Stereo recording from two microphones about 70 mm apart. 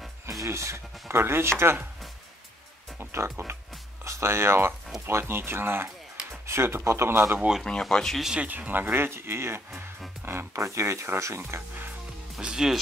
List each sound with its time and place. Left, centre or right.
0.3 s speech: right
3.0 s speech: right
7.6 s speech: centre
8.4 s speech: right
12.4 s speech: centre